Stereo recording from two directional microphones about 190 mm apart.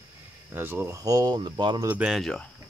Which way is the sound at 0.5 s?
10° right (ahead or behind).